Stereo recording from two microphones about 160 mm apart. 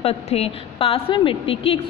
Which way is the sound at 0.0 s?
40° left (ahead or behind).